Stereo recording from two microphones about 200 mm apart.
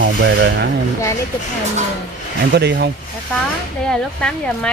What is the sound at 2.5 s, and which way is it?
Speech, 55° right (ahead or behind).